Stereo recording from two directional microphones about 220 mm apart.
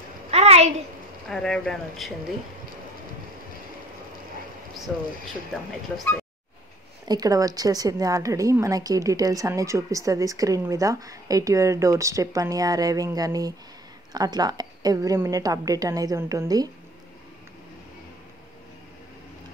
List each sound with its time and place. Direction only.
0.3 s a sound: 30° right (ahead or behind)
1.3 s speech: centre (ahead or behind)
4.9 s speech: centre (ahead or behind)
7.1 s a woman's voice: 15° right (ahead or behind)